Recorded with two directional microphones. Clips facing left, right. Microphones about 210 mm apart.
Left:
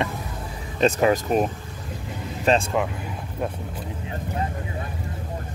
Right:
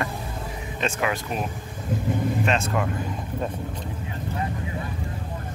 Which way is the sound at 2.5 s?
35° left (ahead or behind).